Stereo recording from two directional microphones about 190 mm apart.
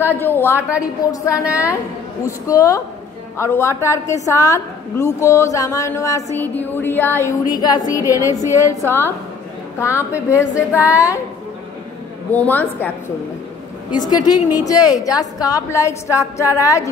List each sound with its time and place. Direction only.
0.0 s a woman's voice: 10° left (ahead or behind)
0.6 s a woman's voice: 5° right (ahead or behind)
1.1 s a woman's voice: 15° left (ahead or behind)
12.3 s a woman's voice: 10° left (ahead or behind)
14.0 s a woman's voice: 20° left (ahead or behind)